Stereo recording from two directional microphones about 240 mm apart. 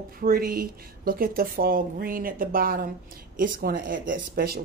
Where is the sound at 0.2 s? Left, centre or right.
Right.